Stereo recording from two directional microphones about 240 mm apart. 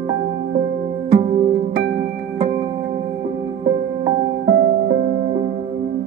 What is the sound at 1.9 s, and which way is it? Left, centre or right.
Music, right.